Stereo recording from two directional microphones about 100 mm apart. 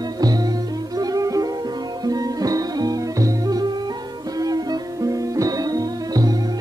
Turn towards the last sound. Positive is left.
turn(degrees=-40)  # may be behind; listen again after turning